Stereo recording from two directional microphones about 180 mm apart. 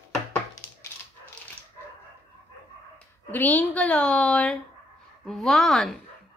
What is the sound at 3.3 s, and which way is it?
A woman's voice, 10° left (ahead or behind).